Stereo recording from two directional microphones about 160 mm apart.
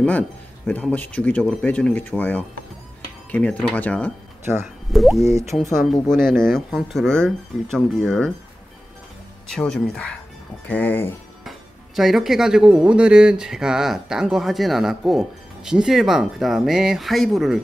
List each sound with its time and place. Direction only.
0.7 s speech: 10° left (ahead or behind)
5.2 s speech: 15° right (ahead or behind)
5.6 s speech: centre (ahead or behind)
9.5 s speech: 5° left (ahead or behind)
11.4 s speech: centre (ahead or behind)